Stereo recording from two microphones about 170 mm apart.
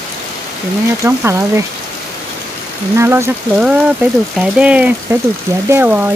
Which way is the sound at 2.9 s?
15° right (ahead or behind).